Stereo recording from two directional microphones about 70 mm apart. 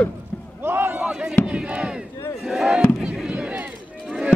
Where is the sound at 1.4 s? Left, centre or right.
Centre.